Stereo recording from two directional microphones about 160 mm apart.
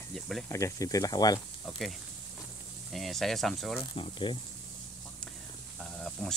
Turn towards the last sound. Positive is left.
turn(degrees=5)  # may be behind; listen again after turning